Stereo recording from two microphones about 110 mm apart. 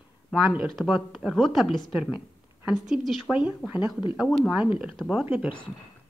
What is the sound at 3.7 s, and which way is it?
Speech, 45° left (ahead or behind).